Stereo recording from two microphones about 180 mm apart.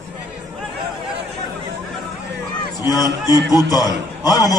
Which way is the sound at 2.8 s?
20° left (ahead or behind).